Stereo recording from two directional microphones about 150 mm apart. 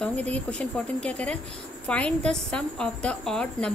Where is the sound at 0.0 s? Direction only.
10° left (ahead or behind).